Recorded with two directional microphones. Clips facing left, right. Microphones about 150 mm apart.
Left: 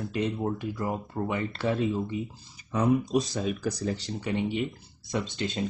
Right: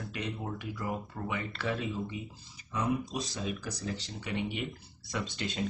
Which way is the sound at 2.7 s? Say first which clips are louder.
Left 8 dB; 45° left (ahead or behind).